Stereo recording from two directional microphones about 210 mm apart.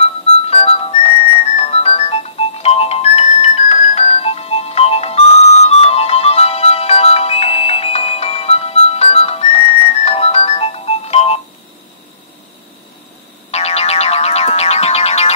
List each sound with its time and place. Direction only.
0.0 s music: 30° left (ahead or behind)
13.5 s music: 30° left (ahead or behind)